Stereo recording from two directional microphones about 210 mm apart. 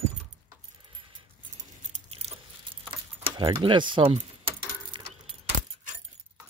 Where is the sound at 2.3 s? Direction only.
30° right (ahead or behind).